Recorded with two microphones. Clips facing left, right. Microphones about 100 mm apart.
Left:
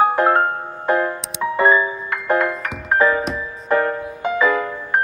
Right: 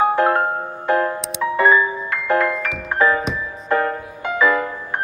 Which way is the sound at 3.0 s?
35° left (ahead or behind).